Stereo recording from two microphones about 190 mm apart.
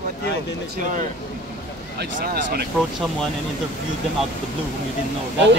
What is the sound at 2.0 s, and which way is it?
Speech, 60° right (ahead or behind).